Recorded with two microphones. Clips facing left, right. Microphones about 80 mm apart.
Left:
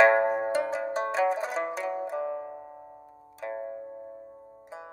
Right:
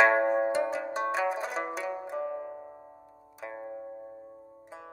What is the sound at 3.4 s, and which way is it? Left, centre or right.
Music, centre.